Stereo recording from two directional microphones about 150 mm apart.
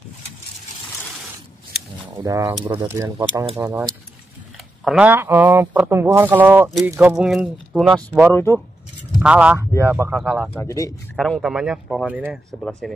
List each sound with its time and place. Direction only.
2.1 s speech: 20° right (ahead or behind)
4.8 s speech: 5° right (ahead or behind)
8.3 s speech: 15° left (ahead or behind)
9.2 s speech: 10° right (ahead or behind)
9.8 s speech: 20° right (ahead or behind)
10.1 s speech: centre (ahead or behind)
10.6 s a man's voice: 20° left (ahead or behind)
11.1 s speech: centre (ahead or behind)